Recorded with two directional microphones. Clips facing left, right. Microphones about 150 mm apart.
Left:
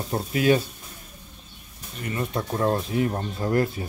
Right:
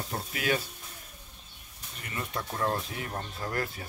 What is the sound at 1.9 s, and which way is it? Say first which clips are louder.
Speech: left 8 dB; 30° left (ahead or behind).